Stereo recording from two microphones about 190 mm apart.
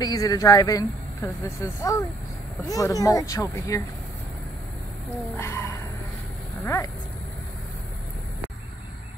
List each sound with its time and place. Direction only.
0.0 s speech: 20° left (ahead or behind)
5.3 s speech: 15° left (ahead or behind)